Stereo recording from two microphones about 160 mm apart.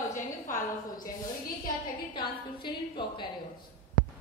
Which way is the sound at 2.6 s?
30° left (ahead or behind).